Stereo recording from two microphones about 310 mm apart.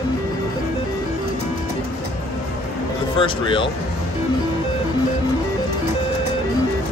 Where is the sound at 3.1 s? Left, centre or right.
Centre.